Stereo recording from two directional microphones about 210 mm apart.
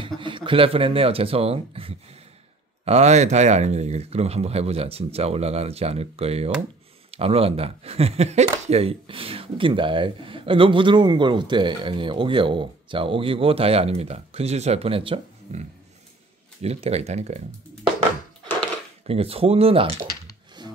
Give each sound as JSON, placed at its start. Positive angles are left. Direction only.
{"t": 0.0, "sound": "speech", "side_deg": -25}
{"t": 16.6, "sound": "speech", "side_deg": -30}
{"t": 19.0, "sound": "speech", "side_deg": -25}
{"t": 20.6, "sound": "rub", "side_deg": -20}